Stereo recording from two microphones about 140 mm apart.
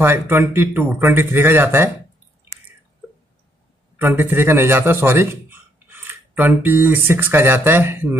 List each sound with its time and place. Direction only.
0.0 s speech: 15° right (ahead or behind)
3.9 s a man's voice: 15° right (ahead or behind)